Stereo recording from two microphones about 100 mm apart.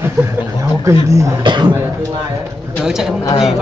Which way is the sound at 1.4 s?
50° right (ahead or behind).